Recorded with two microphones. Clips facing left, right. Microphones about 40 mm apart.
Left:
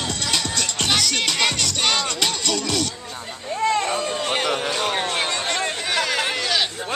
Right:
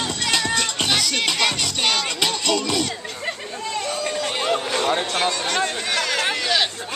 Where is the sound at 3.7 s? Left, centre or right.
Left.